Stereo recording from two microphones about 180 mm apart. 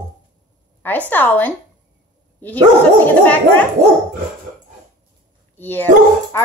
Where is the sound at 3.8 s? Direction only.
15° right (ahead or behind).